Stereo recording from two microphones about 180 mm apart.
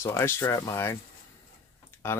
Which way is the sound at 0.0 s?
15° left (ahead or behind).